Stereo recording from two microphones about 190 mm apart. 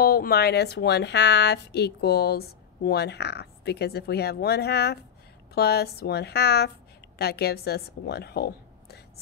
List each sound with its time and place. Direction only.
0.0 s a woman's voice: 55° left (ahead or behind)